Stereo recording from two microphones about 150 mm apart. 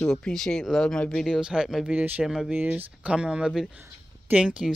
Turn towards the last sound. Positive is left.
turn(degrees=-5)  # may be behind; listen again after turning